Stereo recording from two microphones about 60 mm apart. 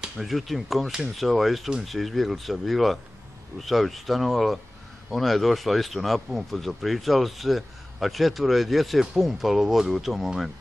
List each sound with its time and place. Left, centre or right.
0.0 s speech: centre